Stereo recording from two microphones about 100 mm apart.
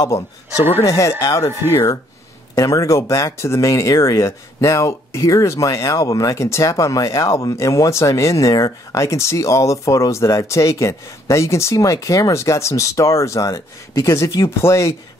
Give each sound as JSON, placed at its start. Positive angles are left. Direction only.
{"t": 0.0, "sound": "speech", "side_deg": 30}
{"t": 2.5, "sound": "speech", "side_deg": 35}